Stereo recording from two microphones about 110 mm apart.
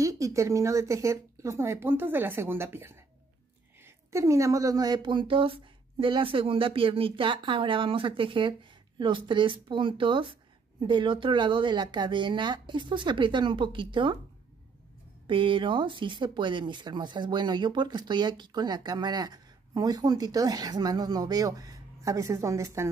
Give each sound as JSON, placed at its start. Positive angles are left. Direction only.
{"t": 0.0, "sound": "speech", "side_deg": -30}
{"t": 4.1, "sound": "speech", "side_deg": -25}
{"t": 15.2, "sound": "speech", "side_deg": -50}